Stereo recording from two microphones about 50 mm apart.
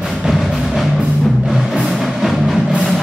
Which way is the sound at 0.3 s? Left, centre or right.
Centre.